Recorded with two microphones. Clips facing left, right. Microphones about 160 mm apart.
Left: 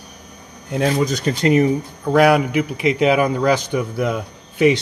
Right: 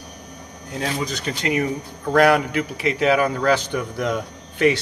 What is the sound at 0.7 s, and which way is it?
Speech, 45° left (ahead or behind).